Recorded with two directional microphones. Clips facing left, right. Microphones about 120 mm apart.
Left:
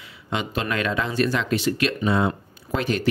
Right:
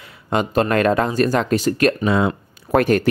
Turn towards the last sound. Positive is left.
turn(degrees=-55)  # may be behind; listen again after turning